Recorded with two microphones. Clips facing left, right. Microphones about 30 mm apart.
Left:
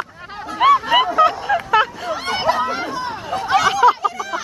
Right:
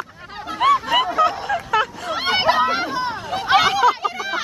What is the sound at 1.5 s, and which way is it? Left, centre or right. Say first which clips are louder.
Vehicle: left 4 dB; centre.